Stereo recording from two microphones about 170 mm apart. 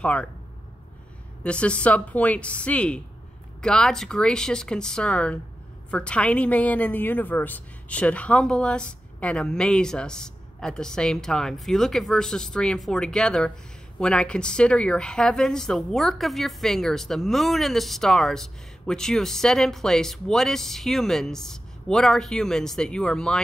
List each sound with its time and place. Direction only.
0.0 s a woman's voice: 5° left (ahead or behind)
1.4 s a woman's voice: 5° left (ahead or behind)